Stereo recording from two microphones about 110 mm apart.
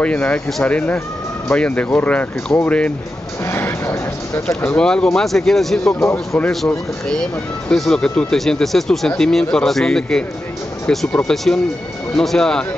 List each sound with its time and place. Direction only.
0.0 s speech: 10° left (ahead or behind)
3.4 s a sound: 25° left (ahead or behind)
4.6 s speech: 10° left (ahead or behind)
7.7 s speech: 5° left (ahead or behind)